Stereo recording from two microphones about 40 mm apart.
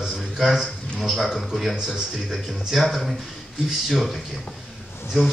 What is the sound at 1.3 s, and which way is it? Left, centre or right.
Speech, centre.